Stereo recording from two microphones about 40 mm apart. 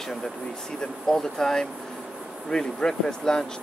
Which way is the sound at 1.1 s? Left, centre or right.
Centre.